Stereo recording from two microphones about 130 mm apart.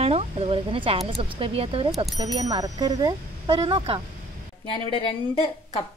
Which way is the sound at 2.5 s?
30° right (ahead or behind).